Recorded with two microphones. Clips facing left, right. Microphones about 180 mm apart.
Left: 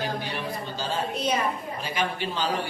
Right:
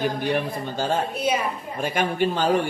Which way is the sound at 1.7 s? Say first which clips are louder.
Right 5 dB; 50° right (ahead or behind).